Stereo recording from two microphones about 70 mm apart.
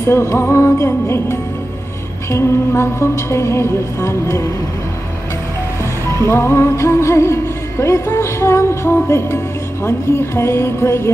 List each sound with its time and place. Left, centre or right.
0.0 s music: left
6.2 s music: left